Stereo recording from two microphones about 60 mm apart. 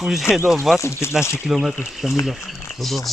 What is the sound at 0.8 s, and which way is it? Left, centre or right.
Speech, left.